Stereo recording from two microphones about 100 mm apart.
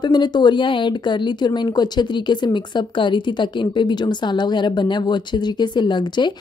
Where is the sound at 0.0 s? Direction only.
50° left (ahead or behind).